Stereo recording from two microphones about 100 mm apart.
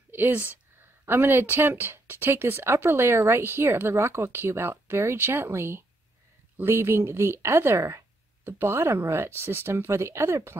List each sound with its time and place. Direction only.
0.1 s speech: 20° right (ahead or behind)